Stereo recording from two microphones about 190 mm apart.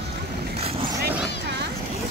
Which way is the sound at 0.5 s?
30° right (ahead or behind).